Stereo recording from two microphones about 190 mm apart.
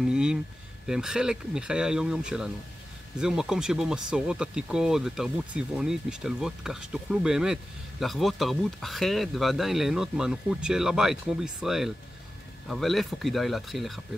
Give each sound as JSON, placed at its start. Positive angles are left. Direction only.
{"t": 0.0, "sound": "speech", "side_deg": -5}